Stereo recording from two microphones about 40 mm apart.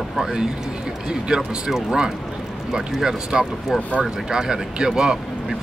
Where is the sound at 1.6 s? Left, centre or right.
Centre.